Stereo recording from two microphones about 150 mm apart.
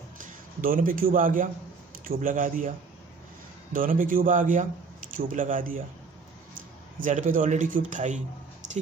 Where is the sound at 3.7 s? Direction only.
65° right (ahead or behind).